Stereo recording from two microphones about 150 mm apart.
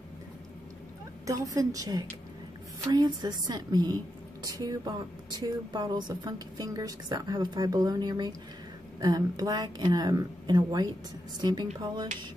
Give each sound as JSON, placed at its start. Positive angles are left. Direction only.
{"t": 1.2, "sound": "a woman's voice", "side_deg": -25}